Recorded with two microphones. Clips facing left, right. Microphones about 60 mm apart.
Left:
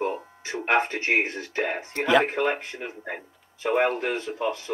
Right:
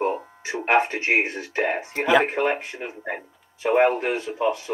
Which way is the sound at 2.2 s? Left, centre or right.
Right.